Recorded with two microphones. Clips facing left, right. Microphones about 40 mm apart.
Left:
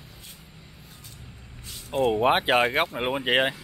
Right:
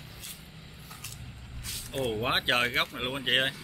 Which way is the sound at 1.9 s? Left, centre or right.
Centre.